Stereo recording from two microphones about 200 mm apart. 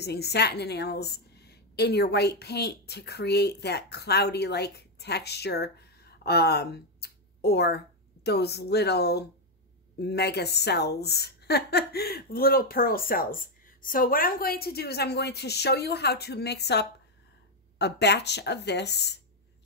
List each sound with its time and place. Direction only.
0.0 s a woman's voice: 55° left (ahead or behind)